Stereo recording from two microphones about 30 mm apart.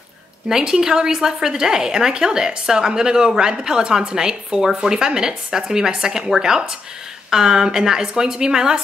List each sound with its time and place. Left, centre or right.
0.5 s a woman's voice: right